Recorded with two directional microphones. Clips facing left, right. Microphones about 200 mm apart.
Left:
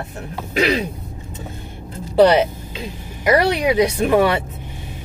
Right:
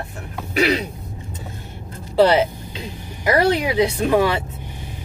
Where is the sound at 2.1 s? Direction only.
20° left (ahead or behind).